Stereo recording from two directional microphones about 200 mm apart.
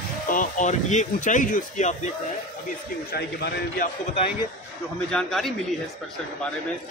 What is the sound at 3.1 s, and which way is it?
Speech, 55° left (ahead or behind).